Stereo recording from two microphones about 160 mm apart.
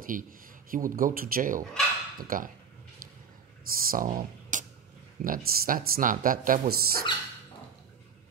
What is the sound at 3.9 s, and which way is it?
Speech, 60° right (ahead or behind).